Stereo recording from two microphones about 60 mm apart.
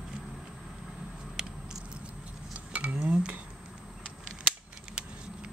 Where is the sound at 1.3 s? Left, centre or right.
Centre.